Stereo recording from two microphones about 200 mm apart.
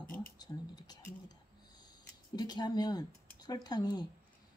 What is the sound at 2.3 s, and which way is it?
Speech, 20° left (ahead or behind).